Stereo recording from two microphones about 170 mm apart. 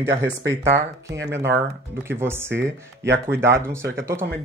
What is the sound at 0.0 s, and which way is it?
Speech, 15° right (ahead or behind).